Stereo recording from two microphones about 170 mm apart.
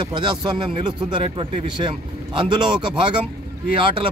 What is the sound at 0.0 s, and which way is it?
Speech, 30° right (ahead or behind).